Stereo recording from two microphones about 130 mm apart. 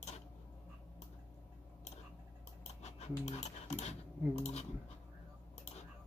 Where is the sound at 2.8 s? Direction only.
55° left (ahead or behind).